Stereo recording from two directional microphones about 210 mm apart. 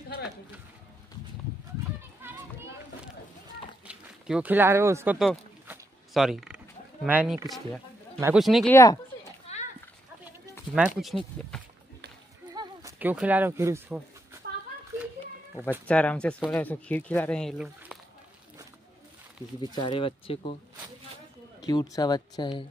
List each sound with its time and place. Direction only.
3.8 s a sound: 5° right (ahead or behind)
8.2 s speech: 5° right (ahead or behind)
8.7 s speech: 15° left (ahead or behind)
9.5 s horse: 30° left (ahead or behind)
11.0 s speech: centre (ahead or behind)
12.5 s a sound: 15° right (ahead or behind)
13.1 s speech: 5° right (ahead or behind)
15.6 s speech: 10° right (ahead or behind)
15.9 s speech: 5° left (ahead or behind)
19.7 s speech: 25° left (ahead or behind)
21.6 s speech: 20° left (ahead or behind)